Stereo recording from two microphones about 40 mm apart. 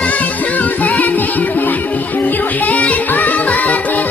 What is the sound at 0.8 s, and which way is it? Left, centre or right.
Music, left.